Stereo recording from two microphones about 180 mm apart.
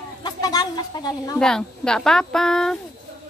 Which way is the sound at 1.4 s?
5° left (ahead or behind).